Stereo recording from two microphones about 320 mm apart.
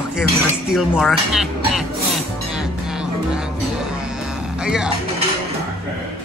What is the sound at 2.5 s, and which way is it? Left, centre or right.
Music, centre.